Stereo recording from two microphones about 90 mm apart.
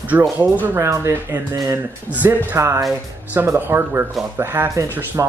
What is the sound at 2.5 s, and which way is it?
Speech, 35° right (ahead or behind).